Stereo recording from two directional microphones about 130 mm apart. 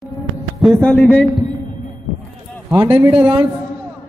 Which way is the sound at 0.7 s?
10° left (ahead or behind).